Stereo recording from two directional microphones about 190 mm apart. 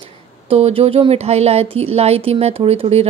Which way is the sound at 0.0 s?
30° right (ahead or behind).